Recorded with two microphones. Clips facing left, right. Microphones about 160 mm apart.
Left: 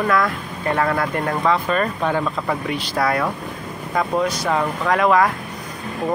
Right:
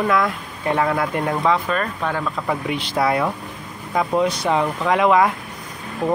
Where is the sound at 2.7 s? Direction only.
20° right (ahead or behind).